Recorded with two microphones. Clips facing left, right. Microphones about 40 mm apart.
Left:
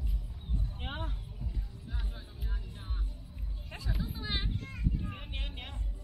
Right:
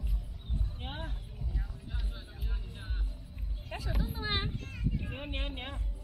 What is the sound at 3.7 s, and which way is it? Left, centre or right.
Music, right.